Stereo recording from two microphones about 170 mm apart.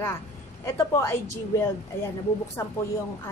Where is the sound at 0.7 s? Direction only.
15° left (ahead or behind).